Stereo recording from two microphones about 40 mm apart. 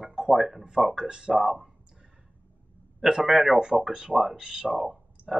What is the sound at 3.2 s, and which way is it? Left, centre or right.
Speech, centre.